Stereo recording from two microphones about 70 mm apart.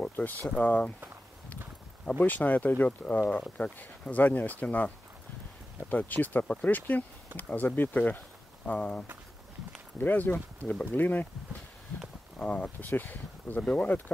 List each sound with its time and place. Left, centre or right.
0.1 s speech: left
2.0 s speech: left
12.4 s speech: centre